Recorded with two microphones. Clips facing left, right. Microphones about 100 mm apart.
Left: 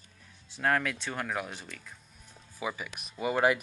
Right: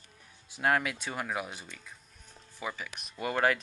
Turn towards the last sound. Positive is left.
turn(degrees=10)  # may be behind; listen again after turning